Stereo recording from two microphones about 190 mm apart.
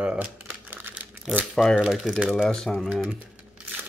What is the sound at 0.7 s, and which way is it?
Crumpling, 10° right (ahead or behind).